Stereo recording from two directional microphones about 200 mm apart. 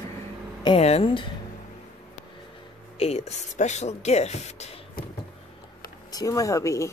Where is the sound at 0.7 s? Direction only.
30° left (ahead or behind).